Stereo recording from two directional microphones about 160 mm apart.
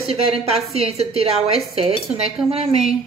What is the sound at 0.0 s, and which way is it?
A woman's voice, 35° right (ahead or behind).